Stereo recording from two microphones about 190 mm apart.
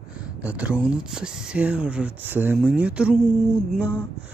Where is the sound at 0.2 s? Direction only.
5° right (ahead or behind).